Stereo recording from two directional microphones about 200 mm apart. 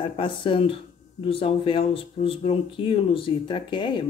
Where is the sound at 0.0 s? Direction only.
25° left (ahead or behind).